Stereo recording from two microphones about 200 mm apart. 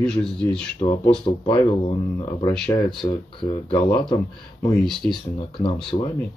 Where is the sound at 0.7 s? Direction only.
25° left (ahead or behind).